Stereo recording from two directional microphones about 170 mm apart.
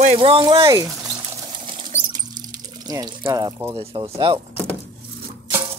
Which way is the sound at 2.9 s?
20° right (ahead or behind).